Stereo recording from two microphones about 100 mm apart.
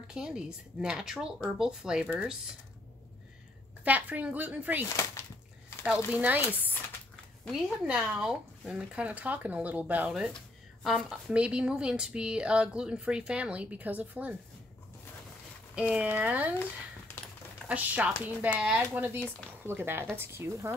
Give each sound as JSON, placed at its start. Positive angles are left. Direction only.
{"t": 0.1, "sound": "speech", "side_deg": -5}
{"t": 3.8, "sound": "speech", "side_deg": -15}
{"t": 4.8, "sound": "speech", "side_deg": 30}
{"t": 5.9, "sound": "speech", "side_deg": -15}
{"t": 15.7, "sound": "speech", "side_deg": -10}
{"t": 17.6, "sound": "speech", "side_deg": -15}
{"t": 19.6, "sound": "speech", "side_deg": -20}